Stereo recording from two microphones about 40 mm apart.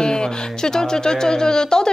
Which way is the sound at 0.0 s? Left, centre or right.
Centre.